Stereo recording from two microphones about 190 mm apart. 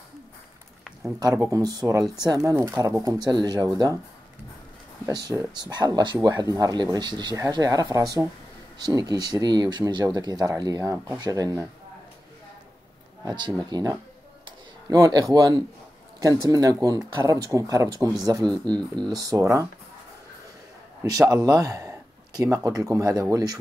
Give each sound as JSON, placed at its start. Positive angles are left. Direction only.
{"t": 1.2, "sound": "speech", "side_deg": -15}
{"t": 5.0, "sound": "speech", "side_deg": -15}
{"t": 13.2, "sound": "speech", "side_deg": -20}
{"t": 21.0, "sound": "speech", "side_deg": -20}